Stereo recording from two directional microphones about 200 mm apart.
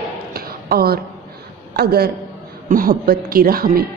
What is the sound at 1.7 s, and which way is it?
A woman's voice, 50° right (ahead or behind).